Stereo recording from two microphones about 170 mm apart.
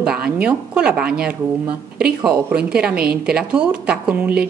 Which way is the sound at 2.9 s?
65° right (ahead or behind).